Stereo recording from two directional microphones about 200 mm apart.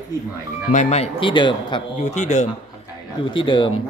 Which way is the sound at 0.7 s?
35° left (ahead or behind).